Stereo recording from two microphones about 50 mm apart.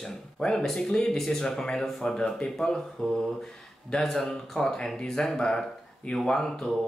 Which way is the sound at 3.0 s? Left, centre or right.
Left.